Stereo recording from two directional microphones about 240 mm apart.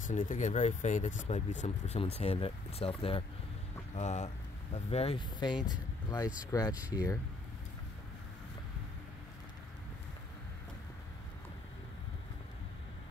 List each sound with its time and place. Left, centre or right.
0.0 s speech: left; by 6.7 s centre
6.7 s speech: centre